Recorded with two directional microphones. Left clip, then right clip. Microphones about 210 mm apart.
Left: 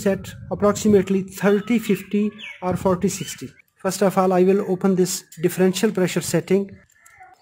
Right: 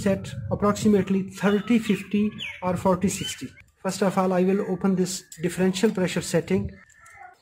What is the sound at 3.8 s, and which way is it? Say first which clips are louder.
Speech: left 5 dB; 45° left (ahead or behind).